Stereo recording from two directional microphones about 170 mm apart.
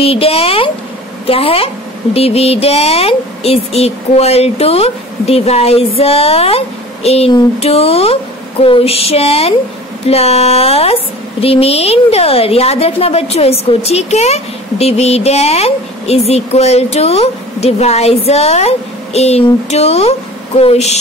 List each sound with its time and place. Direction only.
0.0 s a woman's voice: 35° left (ahead or behind)